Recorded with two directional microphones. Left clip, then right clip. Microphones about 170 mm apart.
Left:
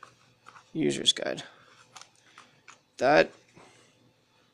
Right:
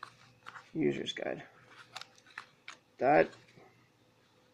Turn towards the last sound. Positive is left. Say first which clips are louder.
# left 5 dB
turn(degrees=20)  # may be behind; listen again after turning